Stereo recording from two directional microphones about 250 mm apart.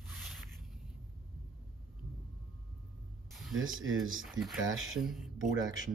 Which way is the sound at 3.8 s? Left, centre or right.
Right.